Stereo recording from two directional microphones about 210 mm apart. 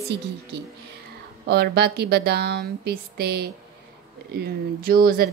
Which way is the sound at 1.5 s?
50° right (ahead or behind).